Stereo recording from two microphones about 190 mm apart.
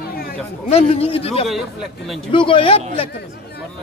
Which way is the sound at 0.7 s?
30° left (ahead or behind).